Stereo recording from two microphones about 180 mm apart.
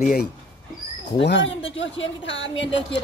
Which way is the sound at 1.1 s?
75° left (ahead or behind).